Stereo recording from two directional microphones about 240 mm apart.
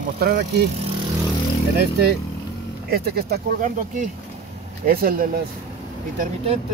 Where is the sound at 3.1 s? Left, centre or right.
Right.